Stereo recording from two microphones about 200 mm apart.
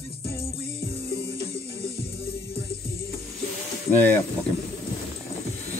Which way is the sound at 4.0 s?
10° left (ahead or behind).